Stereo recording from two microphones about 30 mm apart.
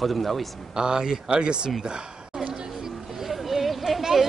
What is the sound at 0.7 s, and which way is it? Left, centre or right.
Speech, right.